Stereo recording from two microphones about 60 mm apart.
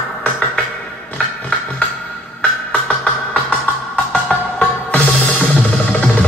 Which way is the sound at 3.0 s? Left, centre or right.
Left.